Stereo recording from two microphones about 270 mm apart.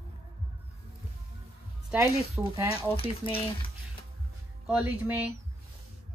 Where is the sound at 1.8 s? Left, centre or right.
Centre.